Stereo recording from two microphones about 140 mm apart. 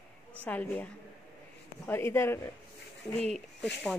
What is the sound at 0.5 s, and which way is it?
Speech, 10° left (ahead or behind).